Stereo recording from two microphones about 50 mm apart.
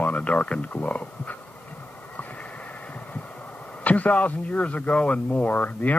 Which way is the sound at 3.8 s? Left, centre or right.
Left.